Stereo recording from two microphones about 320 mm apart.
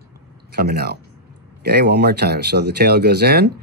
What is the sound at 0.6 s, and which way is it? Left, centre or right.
Speech, right.